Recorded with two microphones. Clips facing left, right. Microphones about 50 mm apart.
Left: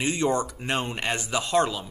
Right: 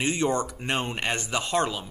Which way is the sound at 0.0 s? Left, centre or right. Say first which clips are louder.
Left 1 dB; centre.